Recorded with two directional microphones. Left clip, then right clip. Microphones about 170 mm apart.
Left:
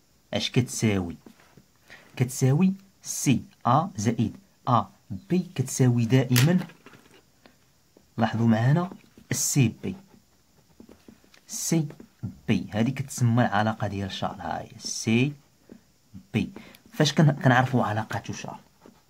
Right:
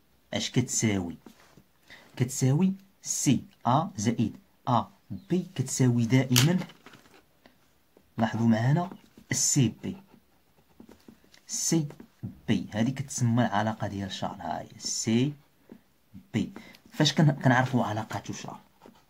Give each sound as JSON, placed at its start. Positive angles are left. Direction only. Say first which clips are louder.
{"t": 0.3, "sound": "speech", "louder": "left 3 dB", "side_deg": 30}
{"t": 8.2, "sound": "speech", "louder": "left 2 dB", "side_deg": 30}
{"t": 12.4, "sound": "speech", "louder": "left 2 dB", "side_deg": 30}
{"t": 16.6, "sound": "speech", "louder": "left 1 dB", "side_deg": 25}